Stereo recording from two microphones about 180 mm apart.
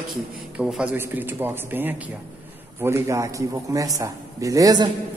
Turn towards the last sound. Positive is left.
turn(degrees=-20)  # may be behind; listen again after turning